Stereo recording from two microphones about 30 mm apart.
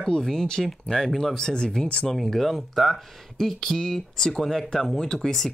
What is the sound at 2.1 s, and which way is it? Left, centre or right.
Speech, centre.